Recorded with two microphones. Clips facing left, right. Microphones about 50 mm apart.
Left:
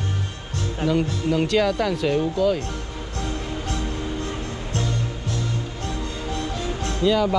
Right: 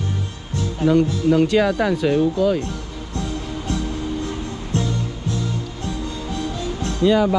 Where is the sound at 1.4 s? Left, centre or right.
Centre.